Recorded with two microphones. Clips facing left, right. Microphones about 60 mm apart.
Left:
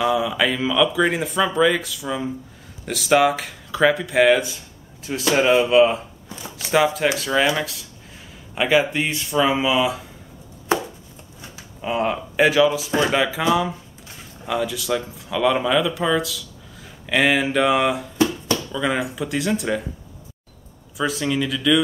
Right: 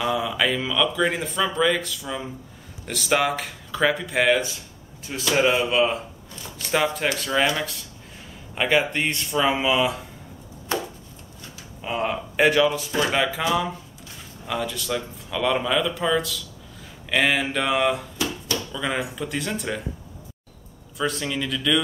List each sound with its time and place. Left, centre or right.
0.0 s speech: centre
5.3 s speech: centre
11.8 s speech: centre
18.1 s finger snapping: left
18.7 s speech: centre
21.0 s speech: centre